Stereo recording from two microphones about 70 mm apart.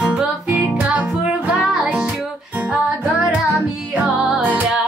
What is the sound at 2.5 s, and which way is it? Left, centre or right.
Music, right.